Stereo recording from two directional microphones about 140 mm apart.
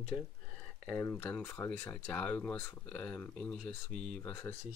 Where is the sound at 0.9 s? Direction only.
15° left (ahead or behind).